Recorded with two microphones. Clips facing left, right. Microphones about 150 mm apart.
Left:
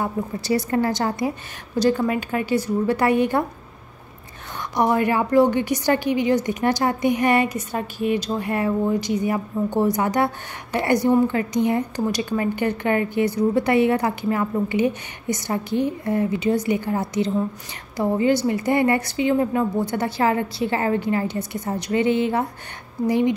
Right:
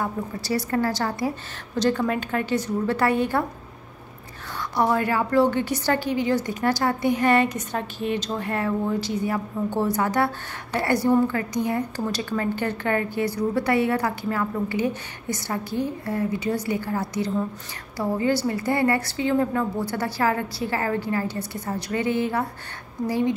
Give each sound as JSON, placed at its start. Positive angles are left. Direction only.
{"t": 0.0, "sound": "a woman's voice", "side_deg": 20}
{"t": 1.8, "sound": "a woman's voice", "side_deg": 10}
{"t": 4.7, "sound": "a woman's voice", "side_deg": 15}